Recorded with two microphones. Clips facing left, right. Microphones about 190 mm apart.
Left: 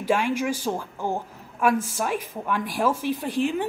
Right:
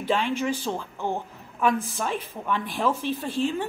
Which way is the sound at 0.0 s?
10° left (ahead or behind).